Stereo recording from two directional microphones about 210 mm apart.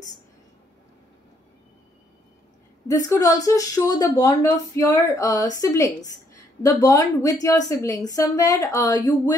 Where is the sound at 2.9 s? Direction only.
15° left (ahead or behind).